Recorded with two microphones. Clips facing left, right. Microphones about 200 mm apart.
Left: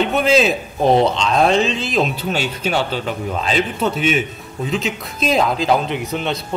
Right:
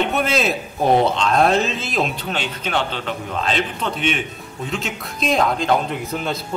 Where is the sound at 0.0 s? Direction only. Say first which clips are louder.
Left 4 dB; centre (ahead or behind).